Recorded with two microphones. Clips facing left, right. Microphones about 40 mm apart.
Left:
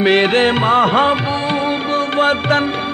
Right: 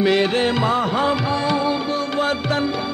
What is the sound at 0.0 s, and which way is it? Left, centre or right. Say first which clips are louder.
Music: left 5 dB; left.